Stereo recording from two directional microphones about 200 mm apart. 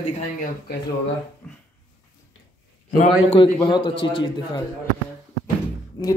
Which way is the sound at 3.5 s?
20° left (ahead or behind).